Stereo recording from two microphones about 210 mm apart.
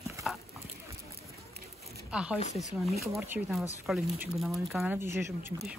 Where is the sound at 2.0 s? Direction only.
5° right (ahead or behind).